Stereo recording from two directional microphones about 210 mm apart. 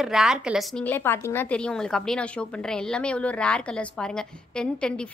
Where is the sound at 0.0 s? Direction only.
Centre (ahead or behind).